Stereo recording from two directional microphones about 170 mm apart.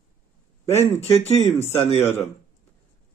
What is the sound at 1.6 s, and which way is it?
Speech, 40° left (ahead or behind).